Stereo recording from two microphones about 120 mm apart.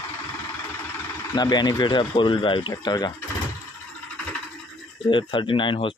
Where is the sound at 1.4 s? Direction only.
35° left (ahead or behind).